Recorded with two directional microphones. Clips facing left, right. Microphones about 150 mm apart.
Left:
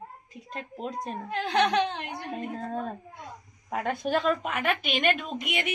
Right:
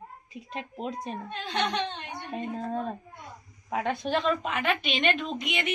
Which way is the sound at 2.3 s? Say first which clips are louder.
Right 2 dB; centre (ahead or behind).